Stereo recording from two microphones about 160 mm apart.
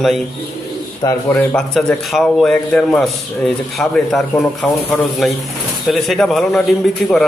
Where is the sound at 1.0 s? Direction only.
25° left (ahead or behind).